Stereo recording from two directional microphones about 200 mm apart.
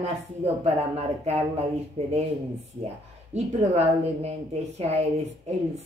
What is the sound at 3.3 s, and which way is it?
A woman's voice, 35° right (ahead or behind).